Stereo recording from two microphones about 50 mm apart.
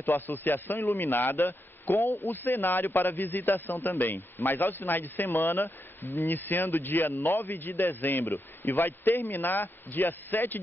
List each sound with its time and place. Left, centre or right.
0.0 s a man's voice: left